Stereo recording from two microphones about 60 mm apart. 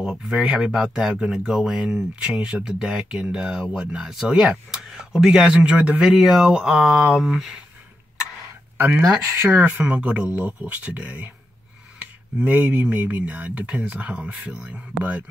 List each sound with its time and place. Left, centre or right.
0.4 s speech: centre
8.7 s speech: right
9.0 s speech: right
9.6 s speech: right